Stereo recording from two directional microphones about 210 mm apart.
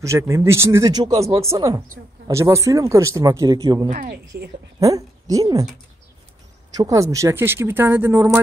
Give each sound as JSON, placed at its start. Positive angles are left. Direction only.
{"t": 0.0, "sound": "speech", "side_deg": -15}
{"t": 3.9, "sound": "a woman's voice", "side_deg": -40}
{"t": 4.7, "sound": "a woman's voice", "side_deg": -15}
{"t": 6.7, "sound": "speech", "side_deg": -15}